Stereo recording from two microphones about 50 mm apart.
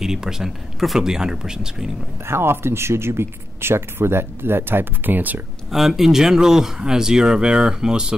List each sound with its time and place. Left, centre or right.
0.0 s speech: centre
2.2 s speech: right
5.7 s speech: centre